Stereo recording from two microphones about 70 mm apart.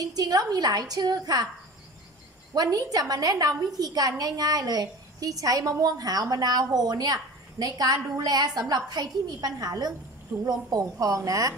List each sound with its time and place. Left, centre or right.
0.0 s a woman's voice: right
2.5 s a woman's voice: right